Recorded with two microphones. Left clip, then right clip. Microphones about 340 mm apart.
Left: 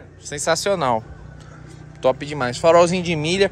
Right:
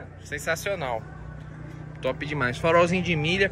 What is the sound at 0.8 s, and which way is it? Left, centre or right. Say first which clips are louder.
Speech: left 10 dB; left.